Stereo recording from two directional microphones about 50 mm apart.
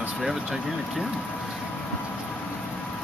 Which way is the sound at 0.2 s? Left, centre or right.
Centre.